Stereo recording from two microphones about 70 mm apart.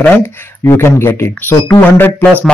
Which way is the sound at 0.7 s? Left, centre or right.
Left.